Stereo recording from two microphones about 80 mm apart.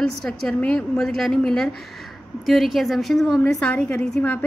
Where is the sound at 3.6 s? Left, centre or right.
Centre.